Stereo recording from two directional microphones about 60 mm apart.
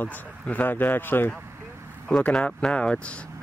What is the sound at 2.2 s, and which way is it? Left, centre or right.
Speech, left.